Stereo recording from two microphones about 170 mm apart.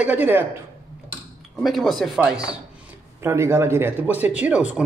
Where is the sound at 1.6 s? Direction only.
Centre (ahead or behind).